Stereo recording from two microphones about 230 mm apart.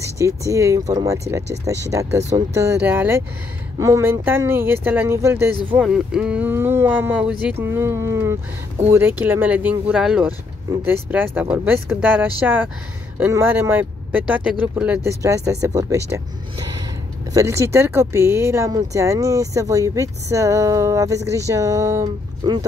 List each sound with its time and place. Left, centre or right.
0.0 s speech: centre